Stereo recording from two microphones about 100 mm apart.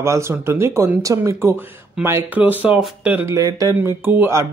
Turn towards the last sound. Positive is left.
turn(degrees=-20)  # may be behind; listen again after turning